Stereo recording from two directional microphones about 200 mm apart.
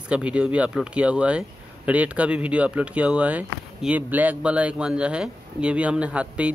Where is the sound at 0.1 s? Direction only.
5° right (ahead or behind).